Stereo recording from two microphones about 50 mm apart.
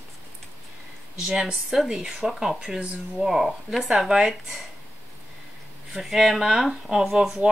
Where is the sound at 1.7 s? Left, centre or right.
Centre.